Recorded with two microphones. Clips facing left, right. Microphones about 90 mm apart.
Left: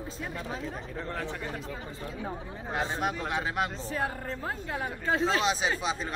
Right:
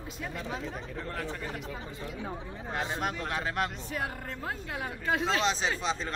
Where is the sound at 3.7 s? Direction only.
35° left (ahead or behind).